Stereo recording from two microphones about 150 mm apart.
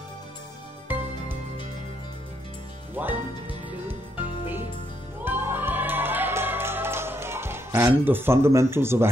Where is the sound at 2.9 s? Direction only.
10° right (ahead or behind).